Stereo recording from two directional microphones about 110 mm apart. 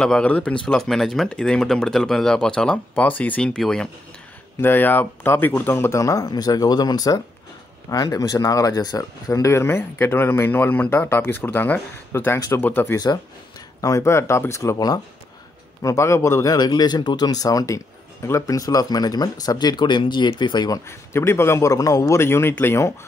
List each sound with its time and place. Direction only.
0.0 s speech: 10° left (ahead or behind)
4.6 s speech: 15° left (ahead or behind)
13.7 s speech: 30° left (ahead or behind)
16.5 s speech: 35° left (ahead or behind)
20.8 s speech: 25° left (ahead or behind)